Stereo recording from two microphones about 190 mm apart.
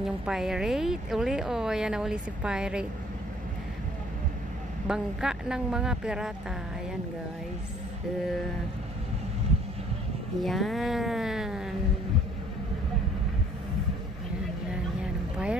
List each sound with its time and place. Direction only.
0.0 s speech: centre (ahead or behind)
4.8 s speech: 5° right (ahead or behind)
10.4 s speech: centre (ahead or behind)
14.7 s vehicle: 5° right (ahead or behind)